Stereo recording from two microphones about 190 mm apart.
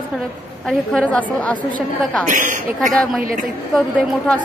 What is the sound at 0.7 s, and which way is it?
A woman's voice, centre (ahead or behind).